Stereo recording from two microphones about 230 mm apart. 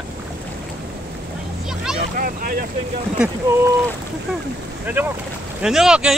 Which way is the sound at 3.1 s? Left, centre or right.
Centre.